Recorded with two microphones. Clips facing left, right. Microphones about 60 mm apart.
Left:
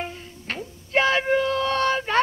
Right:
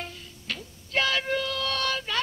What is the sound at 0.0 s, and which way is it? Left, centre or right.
Music, left.